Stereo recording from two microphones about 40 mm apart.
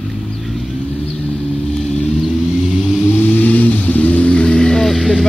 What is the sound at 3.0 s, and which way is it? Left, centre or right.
Vehicle, left.